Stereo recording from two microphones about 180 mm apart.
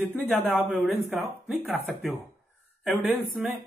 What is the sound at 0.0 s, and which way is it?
Speech, 10° left (ahead or behind).